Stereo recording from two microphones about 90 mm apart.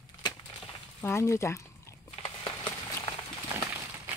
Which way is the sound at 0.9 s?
30° left (ahead or behind).